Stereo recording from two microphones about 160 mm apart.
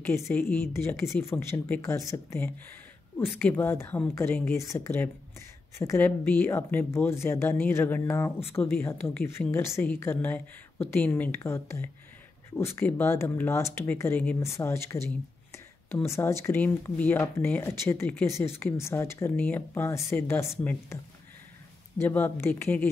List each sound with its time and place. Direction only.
0.3 s speech: 10° left (ahead or behind)
22.0 s speech: 15° left (ahead or behind)